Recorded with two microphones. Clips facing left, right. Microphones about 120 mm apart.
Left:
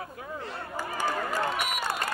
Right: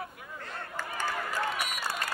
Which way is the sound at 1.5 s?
55° left (ahead or behind).